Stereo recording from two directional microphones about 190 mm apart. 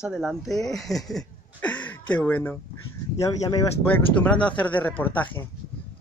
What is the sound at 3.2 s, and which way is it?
Speech, 20° left (ahead or behind).